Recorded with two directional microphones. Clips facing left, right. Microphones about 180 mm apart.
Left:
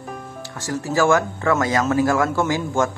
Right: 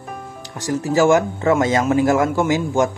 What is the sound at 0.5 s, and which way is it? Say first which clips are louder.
Speech: right 4 dB; 15° right (ahead or behind).